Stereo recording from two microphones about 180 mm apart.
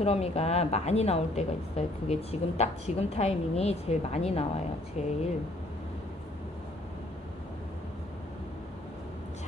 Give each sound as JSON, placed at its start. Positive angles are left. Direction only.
{"t": 0.0, "sound": "a woman's voice", "side_deg": 35}